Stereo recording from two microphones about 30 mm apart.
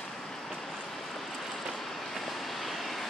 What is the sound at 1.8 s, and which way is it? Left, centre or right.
Vehicle, centre.